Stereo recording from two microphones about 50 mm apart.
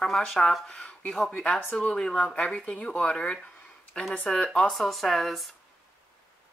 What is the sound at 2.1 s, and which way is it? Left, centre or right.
Speech, centre.